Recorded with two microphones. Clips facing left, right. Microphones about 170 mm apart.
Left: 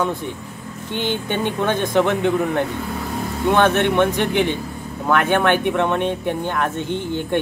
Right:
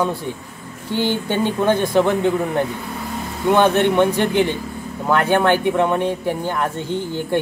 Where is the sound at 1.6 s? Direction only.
15° right (ahead or behind).